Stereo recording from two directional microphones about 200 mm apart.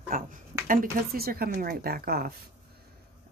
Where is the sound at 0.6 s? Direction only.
50° right (ahead or behind).